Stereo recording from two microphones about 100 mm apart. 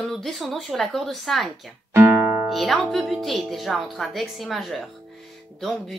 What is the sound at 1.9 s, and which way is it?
Music, 20° right (ahead or behind).